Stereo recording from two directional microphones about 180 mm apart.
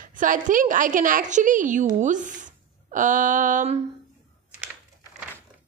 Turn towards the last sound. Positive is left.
turn(degrees=-45)  # may be behind; listen again after turning